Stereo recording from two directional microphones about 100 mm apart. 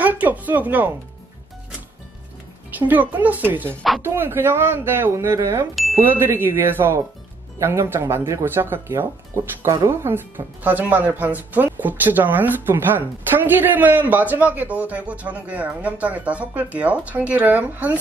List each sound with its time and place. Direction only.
0.0 s speech: 15° right (ahead or behind)
2.9 s speech: 15° right (ahead or behind)